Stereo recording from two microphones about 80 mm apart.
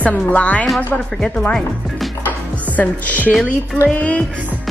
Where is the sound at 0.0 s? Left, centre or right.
Centre.